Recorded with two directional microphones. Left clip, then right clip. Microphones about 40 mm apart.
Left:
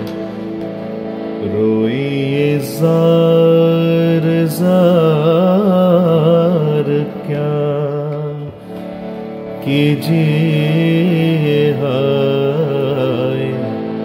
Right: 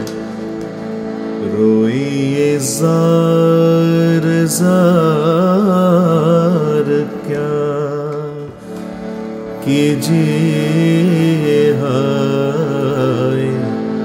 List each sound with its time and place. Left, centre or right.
1.4 s music: centre
9.7 s mantra: centre